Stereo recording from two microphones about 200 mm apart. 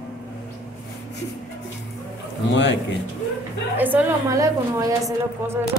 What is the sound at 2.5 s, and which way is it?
Speech, 65° left (ahead or behind).